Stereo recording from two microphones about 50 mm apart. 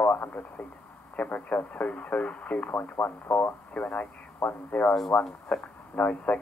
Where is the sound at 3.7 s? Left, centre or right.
Left.